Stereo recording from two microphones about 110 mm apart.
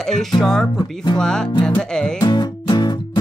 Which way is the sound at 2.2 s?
40° left (ahead or behind).